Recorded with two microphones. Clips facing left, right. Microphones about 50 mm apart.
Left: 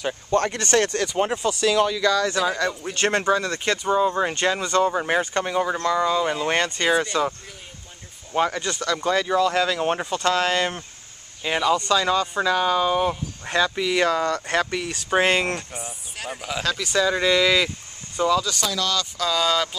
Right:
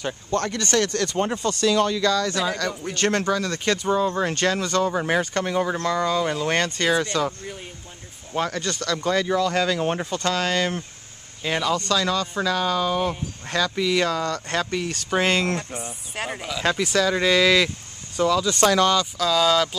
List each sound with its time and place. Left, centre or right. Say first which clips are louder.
0.3 s speech: left 3 dB; left
0.9 s speech: left 1 dB; centre
2.0 s speech: left 1 dB; left
8.5 s speech: left 1 dB; centre
11.4 s speech: left 2 dB; centre
16.2 s speech: right 4 dB; right
17.3 s speech: right 1 dB; centre
18.6 s speech: right 9 dB; right
19.1 s speech: right 2 dB; centre